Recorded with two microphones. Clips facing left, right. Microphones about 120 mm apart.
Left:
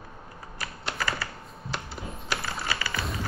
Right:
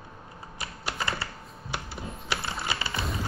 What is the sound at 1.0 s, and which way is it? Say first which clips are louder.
Typewriter: left 1 dB; 25° right (ahead or behind).